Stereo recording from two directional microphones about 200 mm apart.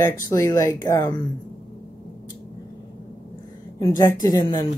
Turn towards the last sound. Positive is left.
turn(degrees=15)  # may be behind; listen again after turning